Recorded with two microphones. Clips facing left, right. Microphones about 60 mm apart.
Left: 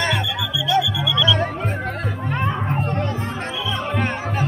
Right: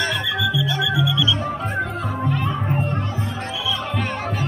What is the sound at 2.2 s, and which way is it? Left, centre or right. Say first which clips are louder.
Music: left 1 dB; left.